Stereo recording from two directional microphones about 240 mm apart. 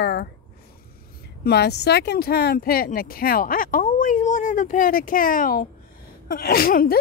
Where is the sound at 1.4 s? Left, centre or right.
Left.